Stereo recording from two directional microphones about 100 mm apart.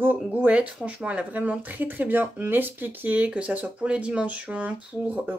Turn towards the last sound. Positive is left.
turn(degrees=-15)  # may be behind; listen again after turning